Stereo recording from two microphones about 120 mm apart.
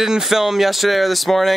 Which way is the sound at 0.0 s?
Centre (ahead or behind).